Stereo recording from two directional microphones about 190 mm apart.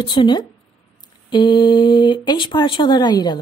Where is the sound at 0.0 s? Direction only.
25° left (ahead or behind).